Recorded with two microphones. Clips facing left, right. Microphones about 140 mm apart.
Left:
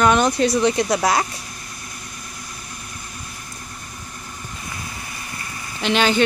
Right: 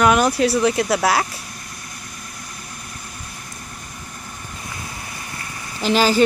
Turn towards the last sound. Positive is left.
turn(degrees=-5)  # may be behind; listen again after turning